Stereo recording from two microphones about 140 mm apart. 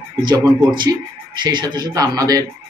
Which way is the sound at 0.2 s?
35° right (ahead or behind).